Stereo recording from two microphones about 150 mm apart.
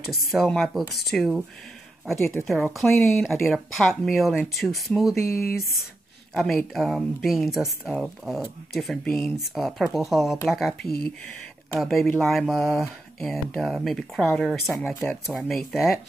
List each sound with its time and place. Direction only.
0.1 s speech: centre (ahead or behind)
2.1 s speech: 20° left (ahead or behind)
2.4 s speech: centre (ahead or behind)
5.1 s speech: 15° left (ahead or behind)
5.6 s speech: centre (ahead or behind)